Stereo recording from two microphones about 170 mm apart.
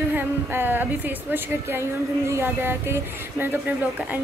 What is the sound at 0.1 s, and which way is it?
A woman's voice, 10° right (ahead or behind).